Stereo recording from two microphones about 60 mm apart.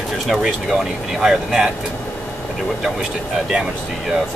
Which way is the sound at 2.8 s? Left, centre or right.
Centre.